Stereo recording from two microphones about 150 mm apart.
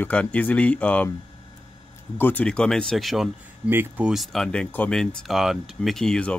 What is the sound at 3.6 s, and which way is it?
Speech, 10° right (ahead or behind).